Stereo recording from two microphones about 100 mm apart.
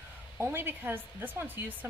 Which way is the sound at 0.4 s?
20° right (ahead or behind).